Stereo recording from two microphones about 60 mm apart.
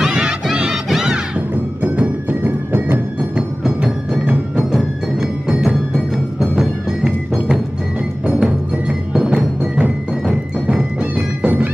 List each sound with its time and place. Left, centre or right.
0.1 s crowd: centre
0.8 s music: centre
1.8 s music: right
3.2 s music: centre
6.1 s timpani: centre
7.1 s music: centre
11.0 s music: right